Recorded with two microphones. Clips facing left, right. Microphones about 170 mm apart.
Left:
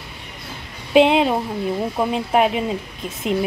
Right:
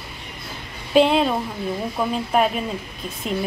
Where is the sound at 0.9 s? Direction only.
15° left (ahead or behind).